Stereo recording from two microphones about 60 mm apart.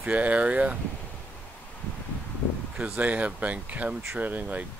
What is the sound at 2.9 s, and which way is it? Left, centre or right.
Speech, right.